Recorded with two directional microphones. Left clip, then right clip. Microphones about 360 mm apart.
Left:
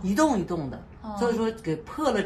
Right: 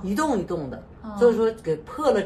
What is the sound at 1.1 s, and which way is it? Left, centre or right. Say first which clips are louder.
Speech: right 7 dB; left.